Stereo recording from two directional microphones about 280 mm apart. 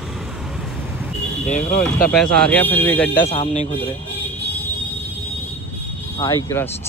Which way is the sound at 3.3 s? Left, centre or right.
Left.